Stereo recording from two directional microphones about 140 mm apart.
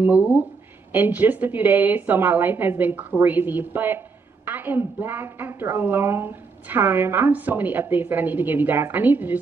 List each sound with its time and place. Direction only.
0.0 s a woman's voice: 10° right (ahead or behind)